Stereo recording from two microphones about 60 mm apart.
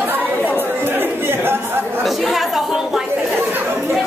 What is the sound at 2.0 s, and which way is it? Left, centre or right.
Speech, centre.